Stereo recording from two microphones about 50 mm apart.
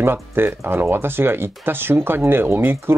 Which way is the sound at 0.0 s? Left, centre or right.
Right.